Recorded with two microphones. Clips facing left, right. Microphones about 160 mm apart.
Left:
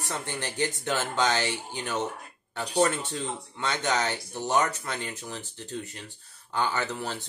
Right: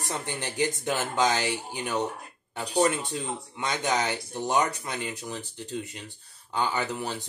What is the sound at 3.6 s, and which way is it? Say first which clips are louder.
A man's voice: even; 15° right (ahead or behind).